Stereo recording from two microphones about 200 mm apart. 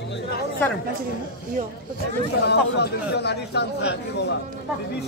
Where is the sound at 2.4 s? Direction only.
55° left (ahead or behind).